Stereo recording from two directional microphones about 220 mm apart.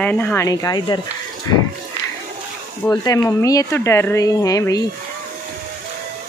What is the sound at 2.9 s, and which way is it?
Speech, 15° left (ahead or behind).